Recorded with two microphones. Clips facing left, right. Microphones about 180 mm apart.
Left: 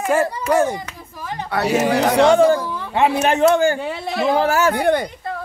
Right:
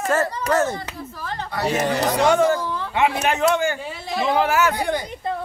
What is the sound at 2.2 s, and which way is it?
Speech, 30° left (ahead or behind).